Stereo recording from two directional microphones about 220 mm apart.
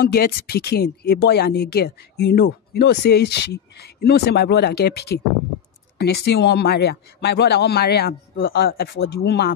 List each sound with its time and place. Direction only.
0.0 s speech: 45° left (ahead or behind)